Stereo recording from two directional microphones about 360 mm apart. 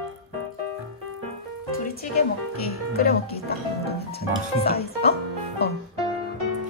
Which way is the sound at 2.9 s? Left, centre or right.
Left.